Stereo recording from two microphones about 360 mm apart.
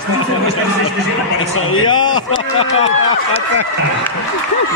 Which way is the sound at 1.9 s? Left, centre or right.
Left.